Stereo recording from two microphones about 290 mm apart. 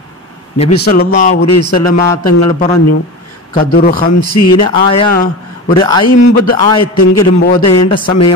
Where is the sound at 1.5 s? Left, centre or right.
Left.